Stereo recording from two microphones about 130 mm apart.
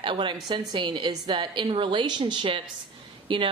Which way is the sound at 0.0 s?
40° right (ahead or behind).